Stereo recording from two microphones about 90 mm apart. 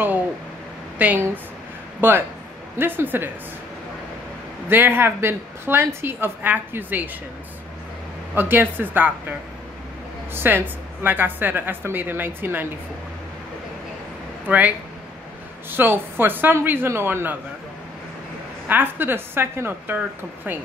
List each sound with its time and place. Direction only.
0.9 s a woman's voice: 20° right (ahead or behind)
4.6 s a woman's voice: 25° right (ahead or behind)
8.4 s a woman's voice: 20° right (ahead or behind)
10.3 s a woman's voice: 25° right (ahead or behind)
14.5 s a woman's voice: 20° right (ahead or behind)
15.7 s a woman's voice: 25° right (ahead or behind)
18.7 s a woman's voice: 20° right (ahead or behind)